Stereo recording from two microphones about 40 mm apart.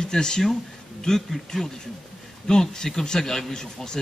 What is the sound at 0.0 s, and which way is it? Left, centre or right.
Speech, centre.